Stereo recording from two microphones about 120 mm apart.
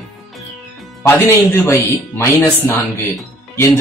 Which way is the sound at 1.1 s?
20° left (ahead or behind).